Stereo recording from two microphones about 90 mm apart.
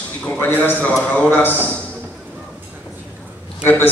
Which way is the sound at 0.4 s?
20° left (ahead or behind).